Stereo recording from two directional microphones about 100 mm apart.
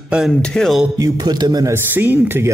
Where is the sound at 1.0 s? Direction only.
40° right (ahead or behind).